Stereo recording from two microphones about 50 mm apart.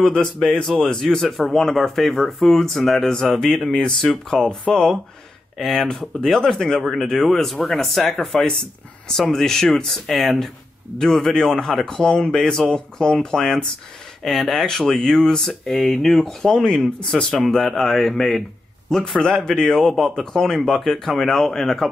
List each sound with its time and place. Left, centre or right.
0.0 s speech: centre
5.6 s speech: centre